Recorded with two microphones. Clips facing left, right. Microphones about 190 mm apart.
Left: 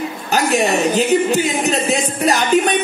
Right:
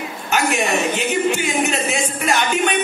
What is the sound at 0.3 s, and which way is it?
A man's voice, 35° left (ahead or behind).